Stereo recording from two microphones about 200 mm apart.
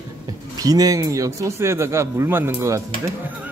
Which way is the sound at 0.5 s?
20° right (ahead or behind).